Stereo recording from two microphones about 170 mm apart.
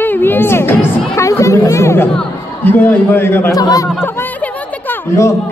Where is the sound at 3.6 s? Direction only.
25° left (ahead or behind).